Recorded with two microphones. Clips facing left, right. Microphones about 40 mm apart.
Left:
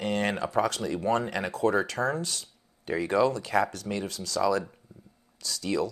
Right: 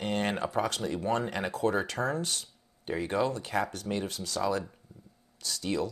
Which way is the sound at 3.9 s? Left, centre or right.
Right.